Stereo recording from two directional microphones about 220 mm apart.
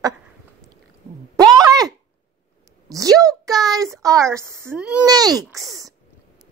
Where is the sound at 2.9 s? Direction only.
15° right (ahead or behind).